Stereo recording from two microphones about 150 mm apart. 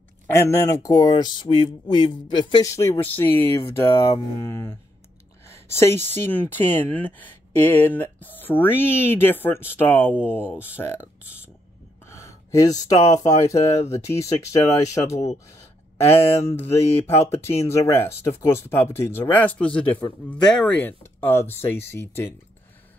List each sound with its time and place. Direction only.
0.3 s speech: 20° left (ahead or behind)
11.0 s speech: 10° right (ahead or behind)
12.1 s speech: 20° left (ahead or behind)